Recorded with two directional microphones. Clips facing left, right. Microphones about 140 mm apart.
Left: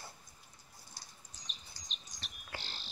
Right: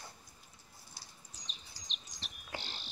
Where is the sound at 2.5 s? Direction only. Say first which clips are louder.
Right 3 dB; 20° right (ahead or behind).